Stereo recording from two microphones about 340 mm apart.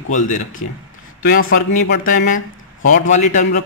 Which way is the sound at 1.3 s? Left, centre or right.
Left.